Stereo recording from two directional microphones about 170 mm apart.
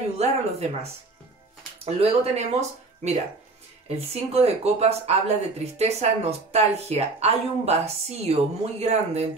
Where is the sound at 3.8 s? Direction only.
35° right (ahead or behind).